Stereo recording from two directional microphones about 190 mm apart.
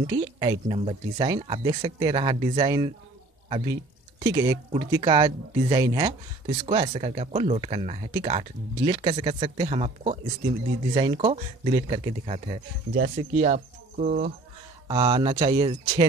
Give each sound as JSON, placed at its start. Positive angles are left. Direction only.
{"t": 0.0, "sound": "speech", "side_deg": -25}
{"t": 12.9, "sound": "speech", "side_deg": -50}
{"t": 14.9, "sound": "speech", "side_deg": -25}